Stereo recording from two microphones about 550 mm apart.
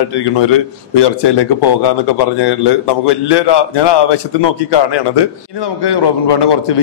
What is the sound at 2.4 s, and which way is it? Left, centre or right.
A man's voice, left.